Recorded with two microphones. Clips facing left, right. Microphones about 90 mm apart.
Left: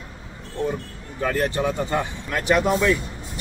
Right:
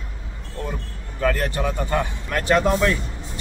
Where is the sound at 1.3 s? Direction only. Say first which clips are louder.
Left 2 dB; 20° left (ahead or behind).